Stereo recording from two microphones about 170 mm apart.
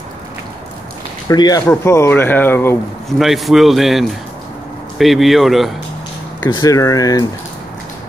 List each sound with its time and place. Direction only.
1.3 s speech: 25° left (ahead or behind)
3.1 s a man's voice: centre (ahead or behind)
6.5 s speech: 20° left (ahead or behind)